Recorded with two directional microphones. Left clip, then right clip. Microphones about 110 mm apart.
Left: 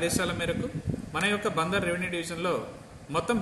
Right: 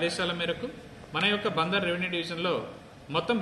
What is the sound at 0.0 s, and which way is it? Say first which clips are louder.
A man's voice: even; 20° left (ahead or behind).